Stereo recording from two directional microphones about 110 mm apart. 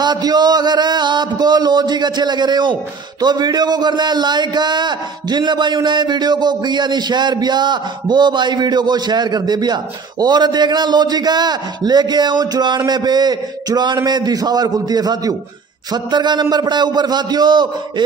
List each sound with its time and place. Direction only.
0.0 s speech: 40° right (ahead or behind)